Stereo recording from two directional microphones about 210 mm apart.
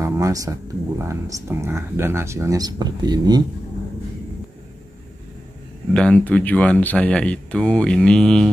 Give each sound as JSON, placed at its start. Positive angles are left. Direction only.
{"t": 0.0, "sound": "speech", "side_deg": -15}
{"t": 5.9, "sound": "speech", "side_deg": 5}